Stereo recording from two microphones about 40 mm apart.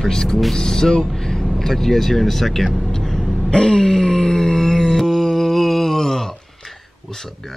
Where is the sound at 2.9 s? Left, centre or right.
Centre.